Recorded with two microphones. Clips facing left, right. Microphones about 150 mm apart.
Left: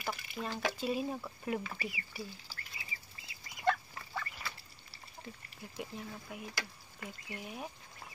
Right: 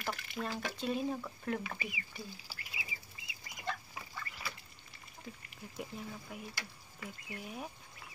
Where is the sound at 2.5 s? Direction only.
10° right (ahead or behind).